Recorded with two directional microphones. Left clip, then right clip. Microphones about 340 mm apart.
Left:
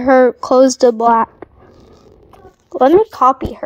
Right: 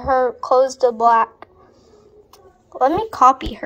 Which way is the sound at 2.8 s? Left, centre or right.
Left.